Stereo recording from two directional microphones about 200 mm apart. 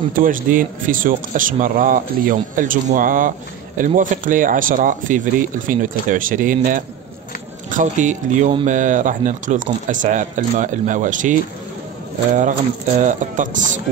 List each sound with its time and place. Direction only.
0.1 s speech: 45° right (ahead or behind)
13.0 s speech: 40° right (ahead or behind)